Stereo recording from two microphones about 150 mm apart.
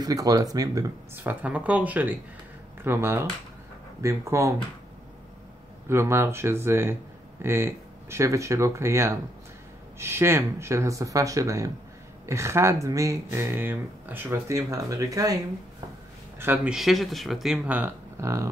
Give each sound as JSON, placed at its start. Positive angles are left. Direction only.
{"t": 0.0, "sound": "speech", "side_deg": -25}
{"t": 1.2, "sound": "speech", "side_deg": -10}
{"t": 5.9, "sound": "speech", "side_deg": -15}
{"t": 16.3, "sound": "speech", "side_deg": -15}
{"t": 16.7, "sound": "speech", "side_deg": 0}